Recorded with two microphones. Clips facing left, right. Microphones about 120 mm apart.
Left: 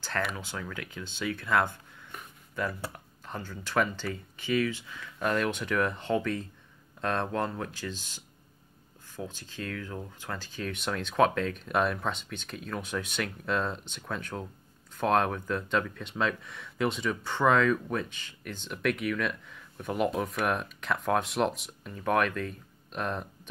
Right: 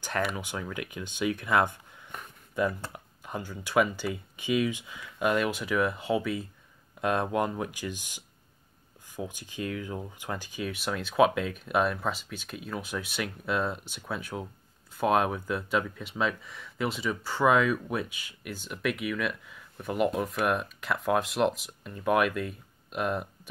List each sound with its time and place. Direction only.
0.4 s speech: 15° right (ahead or behind)
2.9 s speech: 15° right (ahead or behind)